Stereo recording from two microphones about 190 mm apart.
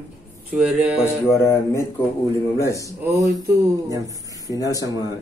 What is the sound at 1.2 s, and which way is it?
Speech, 15° left (ahead or behind).